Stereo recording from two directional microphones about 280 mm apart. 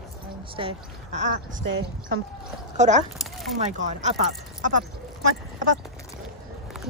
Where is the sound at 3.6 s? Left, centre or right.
Right.